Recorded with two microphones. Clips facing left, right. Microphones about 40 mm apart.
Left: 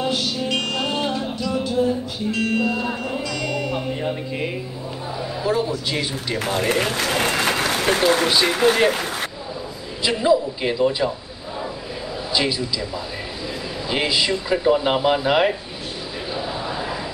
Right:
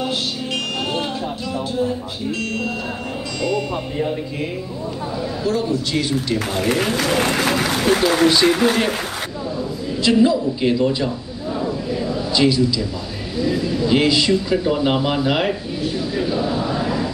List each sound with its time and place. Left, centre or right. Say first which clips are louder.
0.5 s music: even; right
1.0 s music: left 1 dB; centre
3.4 s speech: right 6 dB; left
5.4 s speech: right 1 dB; centre
10.0 s speech: right 2 dB; centre
12.4 s speech: right 6 dB; centre
16.2 s chant: right 6 dB; centre